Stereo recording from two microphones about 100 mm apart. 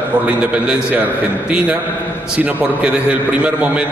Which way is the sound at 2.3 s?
15° right (ahead or behind).